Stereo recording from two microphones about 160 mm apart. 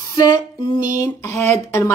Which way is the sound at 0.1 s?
25° left (ahead or behind).